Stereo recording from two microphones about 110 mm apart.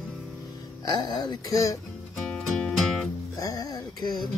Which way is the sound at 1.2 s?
35° left (ahead or behind).